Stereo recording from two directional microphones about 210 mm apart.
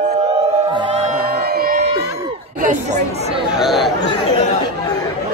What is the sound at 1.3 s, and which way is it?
Crowd, 45° right (ahead or behind).